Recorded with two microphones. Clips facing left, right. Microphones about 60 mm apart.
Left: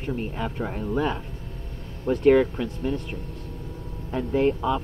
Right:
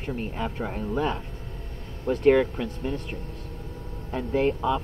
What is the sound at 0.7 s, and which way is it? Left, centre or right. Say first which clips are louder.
Speech: left 2 dB; centre.